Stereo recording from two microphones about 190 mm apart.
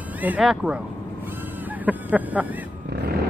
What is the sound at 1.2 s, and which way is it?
Vehicle, 10° right (ahead or behind).